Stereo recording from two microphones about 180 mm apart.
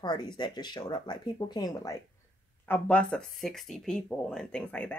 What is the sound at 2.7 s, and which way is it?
A woman's voice, 5° left (ahead or behind).